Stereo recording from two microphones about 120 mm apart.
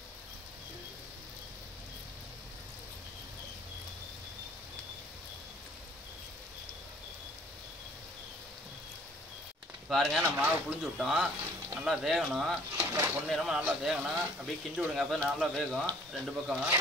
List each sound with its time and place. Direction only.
9.8 s speech: centre (ahead or behind)
10.2 s speech: 15° right (ahead or behind)
11.0 s speech: 5° right (ahead or behind)
12.7 s speech: 15° right (ahead or behind)
13.3 s speech: centre (ahead or behind)